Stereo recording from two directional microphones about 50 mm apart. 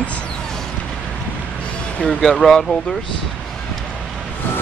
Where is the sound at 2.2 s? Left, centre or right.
Centre.